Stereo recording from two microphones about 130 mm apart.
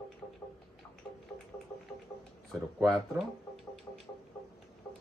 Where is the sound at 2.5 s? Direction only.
5° left (ahead or behind).